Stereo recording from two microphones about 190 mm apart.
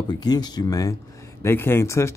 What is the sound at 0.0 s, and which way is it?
Speech, 25° left (ahead or behind).